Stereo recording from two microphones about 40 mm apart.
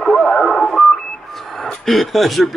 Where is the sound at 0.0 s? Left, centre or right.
Centre.